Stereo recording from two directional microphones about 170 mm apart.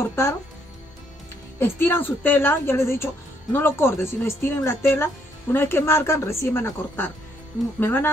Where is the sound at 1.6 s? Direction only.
15° left (ahead or behind).